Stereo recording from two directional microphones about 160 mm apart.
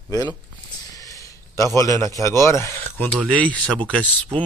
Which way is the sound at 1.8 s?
20° left (ahead or behind).